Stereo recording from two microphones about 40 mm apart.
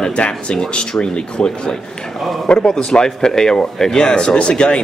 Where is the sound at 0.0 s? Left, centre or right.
Left.